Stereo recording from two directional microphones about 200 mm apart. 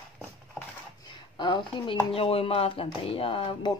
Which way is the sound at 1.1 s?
20° left (ahead or behind).